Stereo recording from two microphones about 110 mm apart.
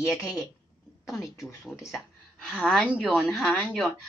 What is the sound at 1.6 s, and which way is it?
Speech, 20° left (ahead or behind).